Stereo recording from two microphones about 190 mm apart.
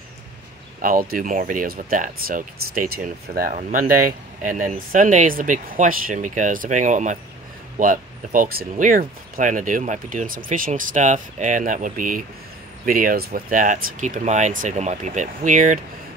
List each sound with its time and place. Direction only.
0.7 s speech: 45° right (ahead or behind)